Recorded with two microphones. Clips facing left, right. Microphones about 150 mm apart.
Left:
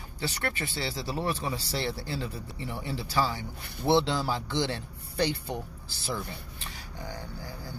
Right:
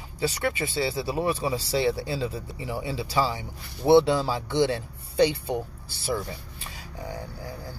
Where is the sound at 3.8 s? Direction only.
Centre (ahead or behind).